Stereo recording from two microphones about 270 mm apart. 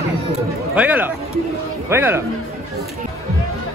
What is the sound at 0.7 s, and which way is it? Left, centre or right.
Speech, centre.